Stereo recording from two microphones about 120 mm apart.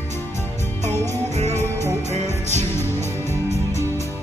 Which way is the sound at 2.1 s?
70° right (ahead or behind).